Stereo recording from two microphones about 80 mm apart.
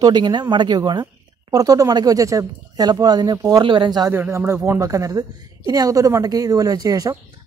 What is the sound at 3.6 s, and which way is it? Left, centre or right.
Speech, right.